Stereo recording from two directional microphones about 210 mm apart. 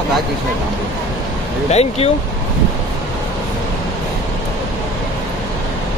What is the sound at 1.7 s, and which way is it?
Speech, 30° left (ahead or behind).